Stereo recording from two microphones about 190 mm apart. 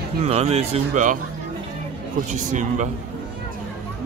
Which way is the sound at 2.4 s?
40° right (ahead or behind).